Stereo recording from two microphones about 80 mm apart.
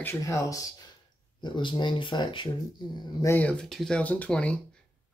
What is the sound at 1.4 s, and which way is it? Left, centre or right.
Speech, left.